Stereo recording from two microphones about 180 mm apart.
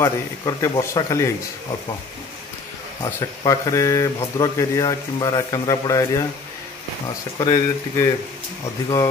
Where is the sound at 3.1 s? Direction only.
20° left (ahead or behind).